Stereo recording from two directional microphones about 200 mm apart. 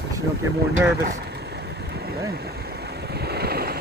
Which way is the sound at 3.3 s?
50° right (ahead or behind).